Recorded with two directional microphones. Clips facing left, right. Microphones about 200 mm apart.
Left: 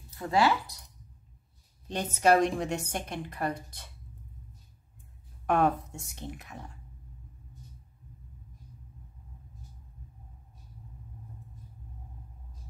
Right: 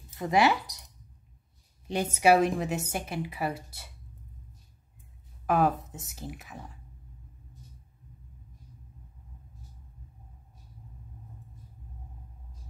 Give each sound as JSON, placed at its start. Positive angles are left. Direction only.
{"t": 0.1, "sound": "speech", "side_deg": -15}
{"t": 1.9, "sound": "a woman's voice", "side_deg": -10}
{"t": 5.5, "sound": "speech", "side_deg": 0}